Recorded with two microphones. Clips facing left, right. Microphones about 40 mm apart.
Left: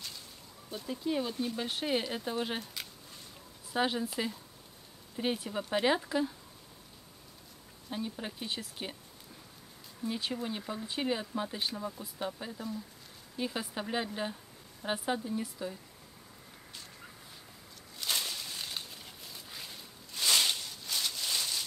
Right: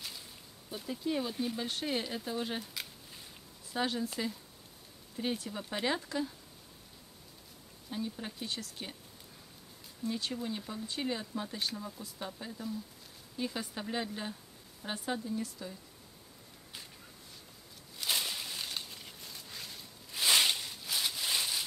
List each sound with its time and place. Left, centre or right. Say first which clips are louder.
0.7 s speech: left 1 dB; centre
2.6 s speech: even; centre
3.7 s speech: left 3 dB; centre
5.1 s speech: left 3 dB; centre
7.9 s speech: left 1 dB; centre
10.0 s speech: left 1 dB; centre
17.9 s a sound: even; centre
20.1 s a sound: right 1 dB; centre